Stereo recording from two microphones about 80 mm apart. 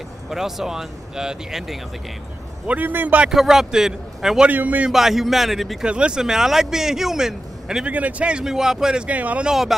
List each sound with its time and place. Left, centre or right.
0.3 s speech: centre
2.6 s a man's voice: right
3.3 s speech: centre
4.5 s a man's voice: centre
4.9 s speech: centre
5.9 s speech: centre
9.5 s speech: centre